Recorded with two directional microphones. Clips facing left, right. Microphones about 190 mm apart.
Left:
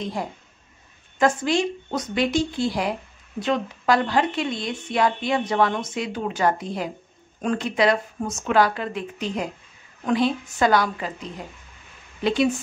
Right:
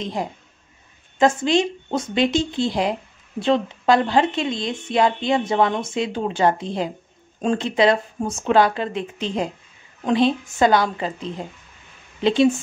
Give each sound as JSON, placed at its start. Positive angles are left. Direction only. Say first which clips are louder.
{"t": 0.0, "sound": "speech", "louder": "right 2 dB", "side_deg": -20}